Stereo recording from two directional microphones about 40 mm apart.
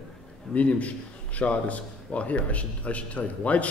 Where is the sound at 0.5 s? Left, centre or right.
Left.